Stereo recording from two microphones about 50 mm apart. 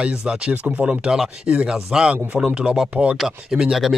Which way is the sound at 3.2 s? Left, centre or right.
Centre.